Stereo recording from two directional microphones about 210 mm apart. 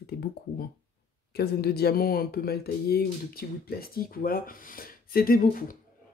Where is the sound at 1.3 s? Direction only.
50° left (ahead or behind).